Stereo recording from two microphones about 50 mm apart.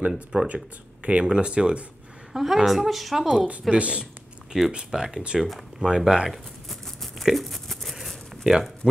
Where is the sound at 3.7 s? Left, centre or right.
Right.